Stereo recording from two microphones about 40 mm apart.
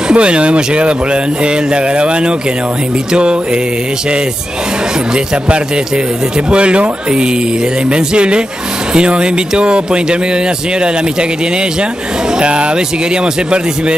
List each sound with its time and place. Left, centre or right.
0.1 s speech: right
6.5 s speech: right
12.4 s speech: right